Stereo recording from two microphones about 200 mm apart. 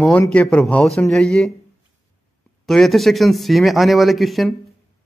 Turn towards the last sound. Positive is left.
turn(degrees=0)  # may be behind; listen again after turning